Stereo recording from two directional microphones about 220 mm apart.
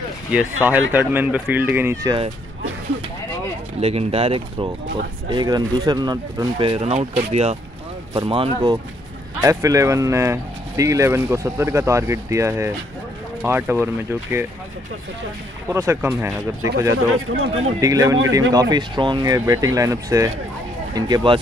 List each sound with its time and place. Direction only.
0.6 s speech: 10° right (ahead or behind)
3.8 s speech: 25° right (ahead or behind)
9.4 s speech: 15° right (ahead or behind)
15.7 s speech: 10° right (ahead or behind)
17.3 s speech: 65° right (ahead or behind)
17.7 s speech: 15° right (ahead or behind)